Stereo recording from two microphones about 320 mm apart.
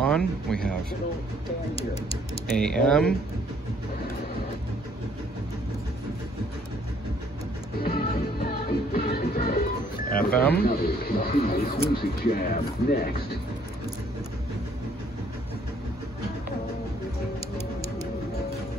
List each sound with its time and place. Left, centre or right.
0.0 s speech: centre
2.5 s speech: centre
7.8 s music: left
10.0 s a sound: left
10.5 s speech: left